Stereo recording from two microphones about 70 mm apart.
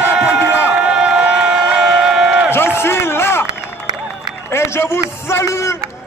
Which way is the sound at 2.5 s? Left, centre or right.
Left.